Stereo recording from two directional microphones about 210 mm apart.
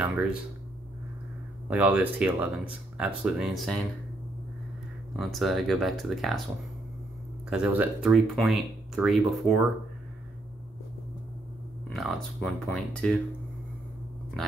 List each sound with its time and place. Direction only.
1.7 s speech: 5° right (ahead or behind)
5.1 s speech: centre (ahead or behind)
7.4 s speech: 5° right (ahead or behind)
11.9 s speech: centre (ahead or behind)